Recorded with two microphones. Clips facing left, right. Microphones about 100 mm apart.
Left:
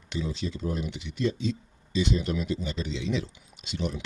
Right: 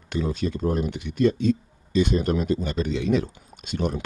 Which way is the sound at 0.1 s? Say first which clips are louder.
Right 6 dB; 50° right (ahead or behind).